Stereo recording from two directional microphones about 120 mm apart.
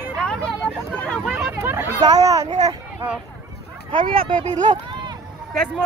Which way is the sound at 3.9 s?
45° right (ahead or behind).